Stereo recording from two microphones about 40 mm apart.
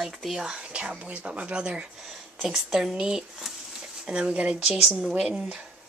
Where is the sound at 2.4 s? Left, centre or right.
Centre.